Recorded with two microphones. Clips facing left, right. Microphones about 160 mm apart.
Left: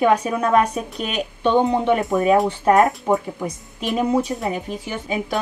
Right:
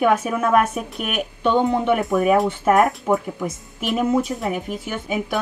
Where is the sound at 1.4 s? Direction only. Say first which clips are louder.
Left 1 dB; 15° left (ahead or behind).